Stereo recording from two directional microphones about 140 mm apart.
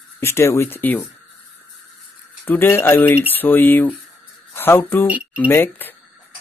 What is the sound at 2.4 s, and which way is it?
Speech, 15° left (ahead or behind).